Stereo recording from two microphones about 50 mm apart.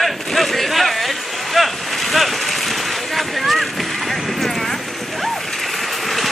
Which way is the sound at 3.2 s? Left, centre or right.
Centre.